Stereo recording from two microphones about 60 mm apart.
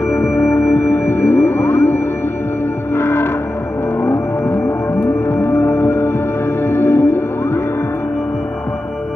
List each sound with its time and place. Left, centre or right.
0.1 s music: left
3.0 s music: left